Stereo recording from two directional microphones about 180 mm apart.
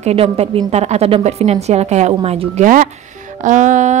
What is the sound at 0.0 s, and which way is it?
Speech, 35° right (ahead or behind).